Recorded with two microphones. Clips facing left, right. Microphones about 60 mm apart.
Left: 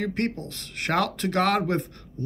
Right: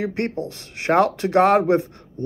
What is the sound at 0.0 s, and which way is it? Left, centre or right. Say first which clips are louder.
Speech: right 3 dB; right.